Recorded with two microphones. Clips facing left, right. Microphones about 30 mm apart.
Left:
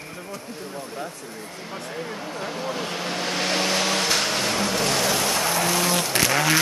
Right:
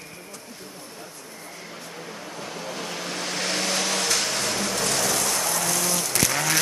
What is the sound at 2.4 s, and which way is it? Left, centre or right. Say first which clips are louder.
Vehicle: left 4 dB; centre.